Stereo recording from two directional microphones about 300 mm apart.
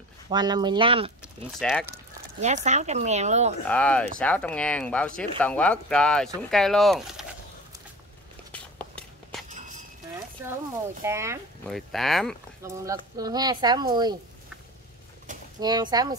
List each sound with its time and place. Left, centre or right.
0.3 s speech: centre
1.2 s speech: centre
2.4 s speech: right
3.6 s speech: centre
8.5 s a sound: centre
11.1 s speech: centre
12.6 s speech: centre
15.3 s a sound: right
15.6 s speech: centre